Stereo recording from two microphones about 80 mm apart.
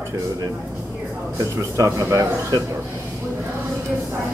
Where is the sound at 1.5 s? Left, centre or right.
Right.